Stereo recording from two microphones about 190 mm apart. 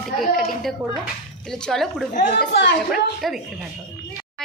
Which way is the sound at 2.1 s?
40° left (ahead or behind).